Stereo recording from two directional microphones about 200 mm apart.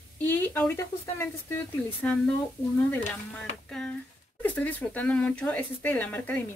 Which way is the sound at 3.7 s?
5° left (ahead or behind).